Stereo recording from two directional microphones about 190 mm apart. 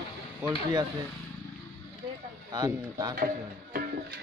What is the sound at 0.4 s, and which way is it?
Speech, 20° right (ahead or behind).